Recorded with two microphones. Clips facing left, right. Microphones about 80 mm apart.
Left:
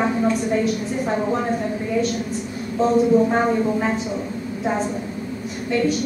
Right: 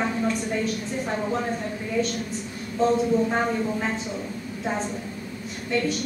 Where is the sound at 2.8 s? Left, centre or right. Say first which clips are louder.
Left 5 dB; centre.